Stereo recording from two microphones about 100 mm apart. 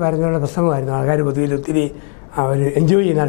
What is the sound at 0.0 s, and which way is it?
A woman's voice, 20° left (ahead or behind).